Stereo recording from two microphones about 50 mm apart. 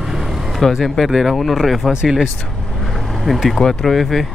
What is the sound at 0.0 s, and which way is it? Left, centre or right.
Vehicle, centre.